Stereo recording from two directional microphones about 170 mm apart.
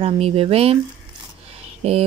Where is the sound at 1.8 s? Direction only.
35° right (ahead or behind).